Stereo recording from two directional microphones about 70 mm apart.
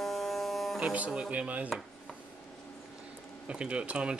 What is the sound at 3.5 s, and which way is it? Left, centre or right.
Speech, centre.